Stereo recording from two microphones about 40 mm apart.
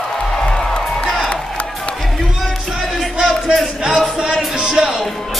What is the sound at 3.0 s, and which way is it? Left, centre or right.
Crowd, centre.